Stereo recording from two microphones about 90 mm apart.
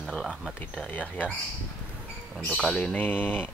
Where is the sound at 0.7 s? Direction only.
15° left (ahead or behind).